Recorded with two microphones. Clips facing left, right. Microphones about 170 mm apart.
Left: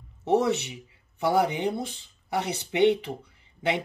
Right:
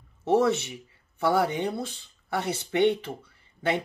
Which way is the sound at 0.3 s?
15° left (ahead or behind).